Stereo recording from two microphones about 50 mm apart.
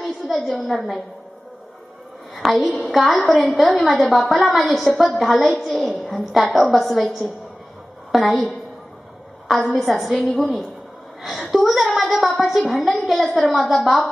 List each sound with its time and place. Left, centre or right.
0.4 s a woman's voice: centre
2.3 s a woman's voice: centre
9.5 s a woman's voice: centre